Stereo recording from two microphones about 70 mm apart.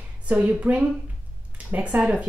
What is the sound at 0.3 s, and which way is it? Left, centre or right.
Speech, centre.